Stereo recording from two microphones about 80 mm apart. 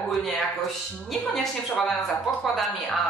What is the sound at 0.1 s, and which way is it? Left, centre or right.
Speech, centre.